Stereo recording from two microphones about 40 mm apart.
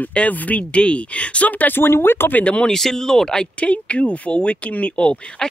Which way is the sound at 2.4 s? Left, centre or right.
Left.